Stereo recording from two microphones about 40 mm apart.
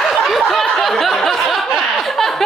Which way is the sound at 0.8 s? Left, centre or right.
Centre.